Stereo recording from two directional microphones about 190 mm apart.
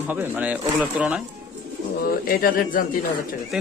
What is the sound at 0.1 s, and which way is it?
A man's voice, 10° right (ahead or behind).